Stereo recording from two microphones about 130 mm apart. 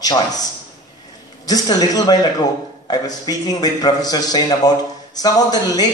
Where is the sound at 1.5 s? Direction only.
30° left (ahead or behind).